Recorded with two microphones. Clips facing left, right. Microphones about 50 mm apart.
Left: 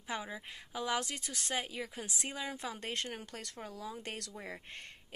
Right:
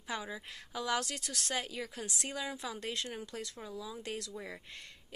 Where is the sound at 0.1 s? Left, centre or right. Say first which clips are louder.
Even; centre.